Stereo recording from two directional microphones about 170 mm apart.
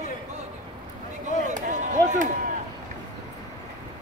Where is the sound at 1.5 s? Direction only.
45° right (ahead or behind).